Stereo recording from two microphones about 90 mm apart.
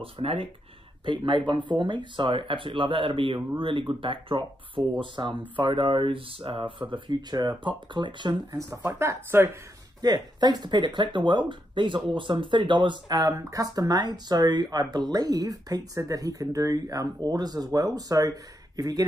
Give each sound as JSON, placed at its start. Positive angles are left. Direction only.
{"t": 0.0, "sound": "speech", "side_deg": -90}
{"t": 1.0, "sound": "speech", "side_deg": -65}
{"t": 8.5, "sound": "speech", "side_deg": -35}
{"t": 10.0, "sound": "speech", "side_deg": -45}
{"t": 13.2, "sound": "speech", "side_deg": -40}